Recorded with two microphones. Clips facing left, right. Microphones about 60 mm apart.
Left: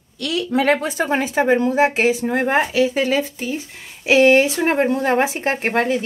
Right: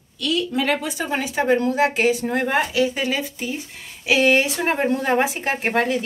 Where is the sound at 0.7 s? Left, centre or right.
Left.